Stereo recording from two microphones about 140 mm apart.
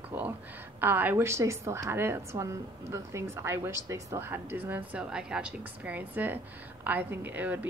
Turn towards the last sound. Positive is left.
turn(degrees=-10)  # may be behind; listen again after turning